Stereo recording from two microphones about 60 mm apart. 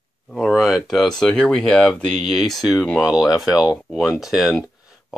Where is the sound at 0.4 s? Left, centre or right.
Centre.